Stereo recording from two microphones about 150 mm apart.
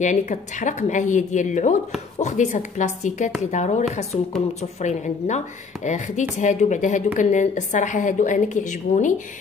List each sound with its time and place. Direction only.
0.0 s a woman's voice: 55° left (ahead or behind)